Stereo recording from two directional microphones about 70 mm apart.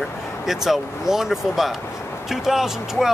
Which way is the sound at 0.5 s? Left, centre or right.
Centre.